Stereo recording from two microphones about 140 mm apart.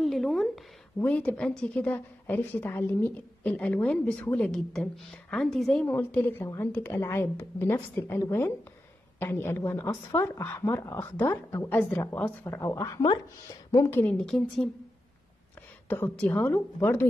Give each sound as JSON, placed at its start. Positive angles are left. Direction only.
{"t": 0.0, "sound": "a sound", "side_deg": 0}
{"t": 0.9, "sound": "a woman's voice", "side_deg": 10}
{"t": 5.9, "sound": "a woman's voice", "side_deg": 15}
{"t": 15.9, "sound": "a woman's voice", "side_deg": 15}